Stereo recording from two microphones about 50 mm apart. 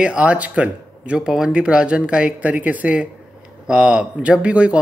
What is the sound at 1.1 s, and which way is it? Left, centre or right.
Speech, centre.